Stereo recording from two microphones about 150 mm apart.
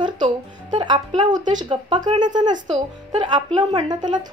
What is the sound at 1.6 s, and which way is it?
Speech, 30° right (ahead or behind).